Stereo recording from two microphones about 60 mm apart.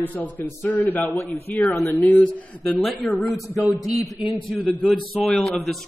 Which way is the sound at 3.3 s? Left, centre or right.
Left.